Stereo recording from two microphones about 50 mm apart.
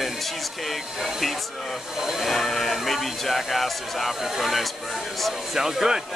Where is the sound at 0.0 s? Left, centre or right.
Centre.